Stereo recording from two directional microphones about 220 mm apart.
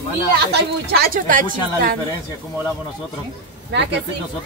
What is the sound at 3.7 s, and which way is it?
Speech, 50° right (ahead or behind).